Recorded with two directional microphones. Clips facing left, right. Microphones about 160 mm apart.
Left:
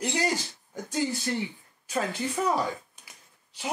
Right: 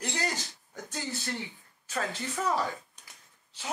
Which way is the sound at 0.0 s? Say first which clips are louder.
Left 6 dB; 10° left (ahead or behind).